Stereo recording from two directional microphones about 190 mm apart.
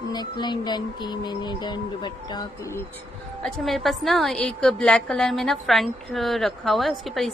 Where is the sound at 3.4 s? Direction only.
Centre (ahead or behind).